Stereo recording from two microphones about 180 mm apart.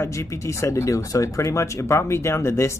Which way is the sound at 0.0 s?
15° left (ahead or behind).